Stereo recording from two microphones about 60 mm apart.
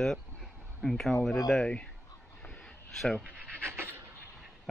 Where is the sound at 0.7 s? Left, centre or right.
Centre.